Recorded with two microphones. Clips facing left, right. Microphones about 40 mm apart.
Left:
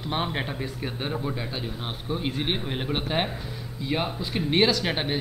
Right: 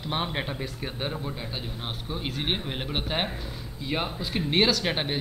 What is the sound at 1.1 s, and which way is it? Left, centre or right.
Speech, centre.